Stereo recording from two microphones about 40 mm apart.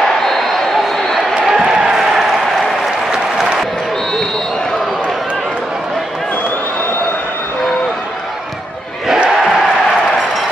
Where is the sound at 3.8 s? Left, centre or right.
Centre.